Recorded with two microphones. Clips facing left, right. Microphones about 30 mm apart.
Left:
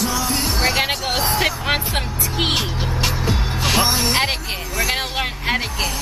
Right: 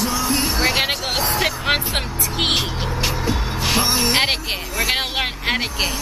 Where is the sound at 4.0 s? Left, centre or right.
Centre.